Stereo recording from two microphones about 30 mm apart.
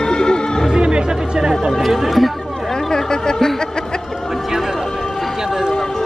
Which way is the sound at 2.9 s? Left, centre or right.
Left.